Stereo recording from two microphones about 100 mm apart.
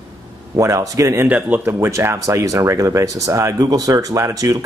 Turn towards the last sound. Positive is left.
turn(degrees=-35)  # may be behind; listen again after turning